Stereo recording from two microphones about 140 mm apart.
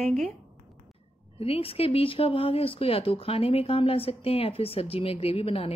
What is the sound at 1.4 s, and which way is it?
Speech, 45° left (ahead or behind).